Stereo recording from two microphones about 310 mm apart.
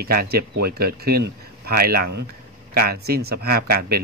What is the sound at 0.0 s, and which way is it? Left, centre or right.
Speech, right.